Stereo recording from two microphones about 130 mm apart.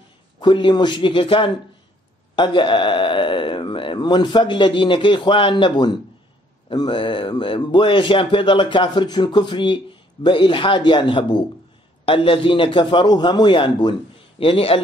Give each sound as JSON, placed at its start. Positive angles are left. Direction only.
{"t": 0.4, "sound": "a man's voice", "side_deg": 40}